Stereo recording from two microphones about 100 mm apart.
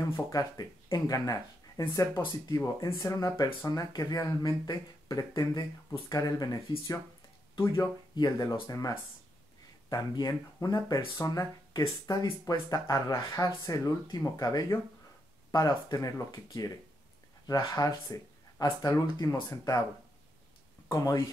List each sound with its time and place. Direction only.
0.3 s speech: 35° left (ahead or behind)
17.6 s speech: 50° left (ahead or behind)
17.8 s speech: 35° left (ahead or behind)
20.9 s speech: 35° left (ahead or behind)